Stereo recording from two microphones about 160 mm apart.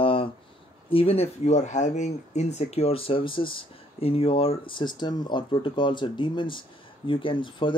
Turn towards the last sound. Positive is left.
turn(degrees=30)  # may be behind; listen again after turning